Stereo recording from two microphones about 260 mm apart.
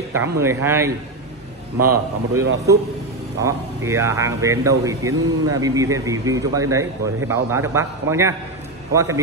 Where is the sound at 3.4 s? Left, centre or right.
Centre.